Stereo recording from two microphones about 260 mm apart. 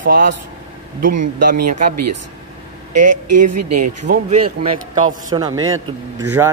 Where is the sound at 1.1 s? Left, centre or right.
Right.